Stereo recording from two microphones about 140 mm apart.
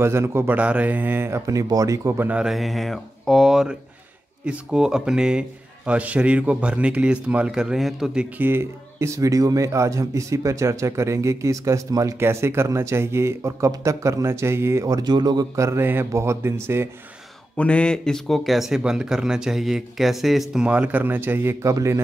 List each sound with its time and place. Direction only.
0.0 s a man's voice: 20° right (ahead or behind)
17.6 s speech: 10° left (ahead or behind); by 22.0 s 20° right (ahead or behind)